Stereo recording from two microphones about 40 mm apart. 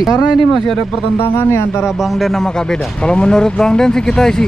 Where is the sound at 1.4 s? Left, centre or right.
Left.